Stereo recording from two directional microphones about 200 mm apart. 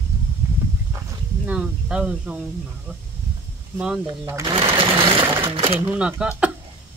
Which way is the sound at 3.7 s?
5° right (ahead or behind).